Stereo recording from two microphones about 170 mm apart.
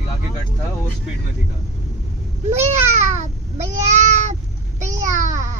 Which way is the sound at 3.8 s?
45° right (ahead or behind).